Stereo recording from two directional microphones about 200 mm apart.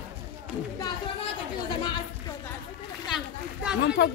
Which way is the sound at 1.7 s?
20° left (ahead or behind).